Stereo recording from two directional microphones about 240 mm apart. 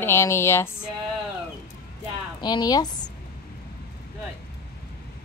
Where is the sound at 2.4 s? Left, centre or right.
Centre.